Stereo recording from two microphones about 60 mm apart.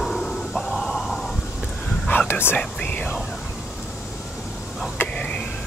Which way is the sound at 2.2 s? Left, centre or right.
Left.